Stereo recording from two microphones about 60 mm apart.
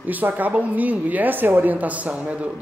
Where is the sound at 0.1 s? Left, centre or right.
Right.